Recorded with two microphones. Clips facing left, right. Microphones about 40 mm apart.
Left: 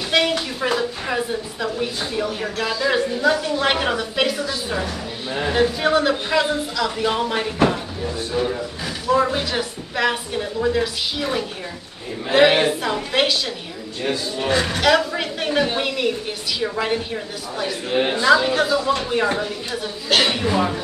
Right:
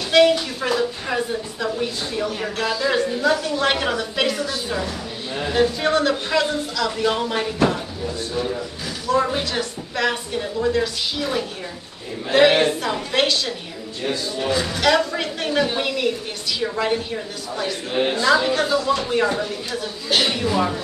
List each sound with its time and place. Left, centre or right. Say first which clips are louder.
0.1 s a woman's voice: right 5 dB; centre
5.3 s a woman's voice: left 1 dB; centre
9.1 s a woman's voice: left 1 dB; centre
14.5 s speech: left 3 dB; left
14.8 s a woman's voice: right 1 dB; centre